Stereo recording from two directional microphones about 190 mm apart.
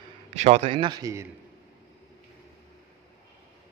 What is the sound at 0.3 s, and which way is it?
Speech, 35° right (ahead or behind).